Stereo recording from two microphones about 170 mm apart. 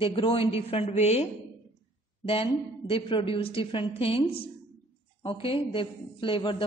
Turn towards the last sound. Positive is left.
turn(degrees=30)  # may be behind; listen again after turning